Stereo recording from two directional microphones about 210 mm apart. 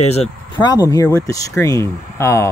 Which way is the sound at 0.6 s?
15° left (ahead or behind).